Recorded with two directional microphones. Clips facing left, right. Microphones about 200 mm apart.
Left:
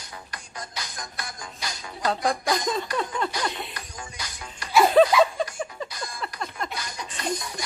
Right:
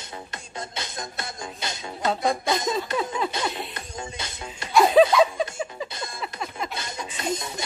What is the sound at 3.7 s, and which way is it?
Music, 25° right (ahead or behind).